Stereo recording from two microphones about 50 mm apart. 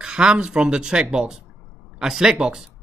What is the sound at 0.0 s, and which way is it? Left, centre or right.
Speech, centre.